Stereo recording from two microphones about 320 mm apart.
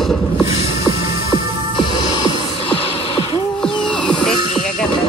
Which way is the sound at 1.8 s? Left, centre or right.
Centre.